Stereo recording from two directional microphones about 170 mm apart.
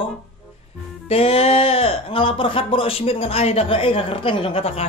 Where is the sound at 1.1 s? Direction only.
35° left (ahead or behind).